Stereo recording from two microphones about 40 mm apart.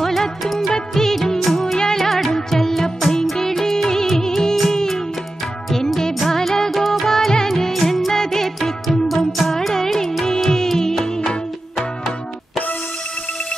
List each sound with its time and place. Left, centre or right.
0.0 s music: centre
0.7 s music of bollywood: centre
2.0 s music: centre